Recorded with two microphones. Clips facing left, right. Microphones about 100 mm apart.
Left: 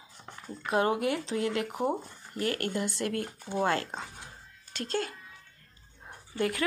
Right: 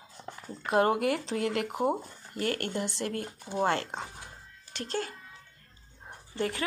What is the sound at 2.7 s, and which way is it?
Speech, 25° right (ahead or behind).